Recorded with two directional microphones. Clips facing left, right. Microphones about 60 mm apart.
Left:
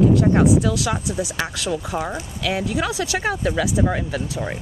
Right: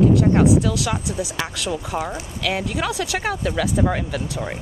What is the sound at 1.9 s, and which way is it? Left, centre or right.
Speech, right.